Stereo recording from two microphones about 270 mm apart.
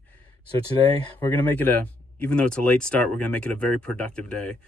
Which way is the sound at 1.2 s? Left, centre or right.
Centre.